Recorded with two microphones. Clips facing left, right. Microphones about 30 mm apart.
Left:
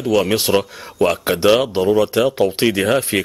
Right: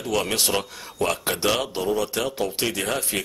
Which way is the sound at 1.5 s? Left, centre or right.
Left.